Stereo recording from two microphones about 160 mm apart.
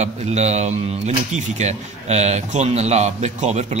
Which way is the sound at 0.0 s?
45° right (ahead or behind).